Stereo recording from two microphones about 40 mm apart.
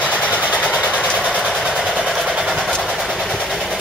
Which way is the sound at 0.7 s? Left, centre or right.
Right.